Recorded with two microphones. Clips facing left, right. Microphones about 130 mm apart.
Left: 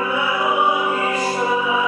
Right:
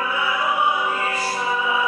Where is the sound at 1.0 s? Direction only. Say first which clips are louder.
Left 4 dB; 15° left (ahead or behind).